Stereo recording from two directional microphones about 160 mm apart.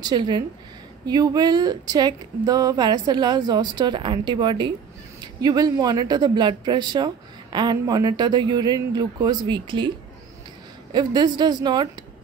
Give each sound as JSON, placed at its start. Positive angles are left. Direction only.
{"t": 0.0, "sound": "speech", "side_deg": -25}